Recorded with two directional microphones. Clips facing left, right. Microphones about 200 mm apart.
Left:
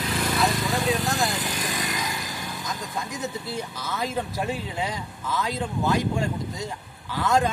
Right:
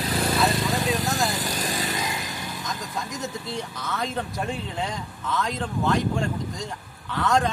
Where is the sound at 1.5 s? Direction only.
35° right (ahead or behind).